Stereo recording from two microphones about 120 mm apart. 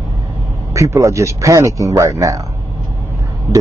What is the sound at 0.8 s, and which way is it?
A man's voice, 25° right (ahead or behind).